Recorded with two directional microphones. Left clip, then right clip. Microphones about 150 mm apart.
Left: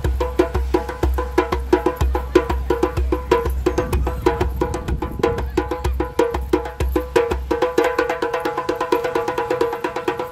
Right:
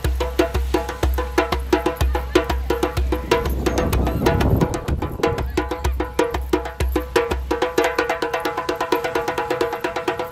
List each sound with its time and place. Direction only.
0.0 s music: 20° right (ahead or behind)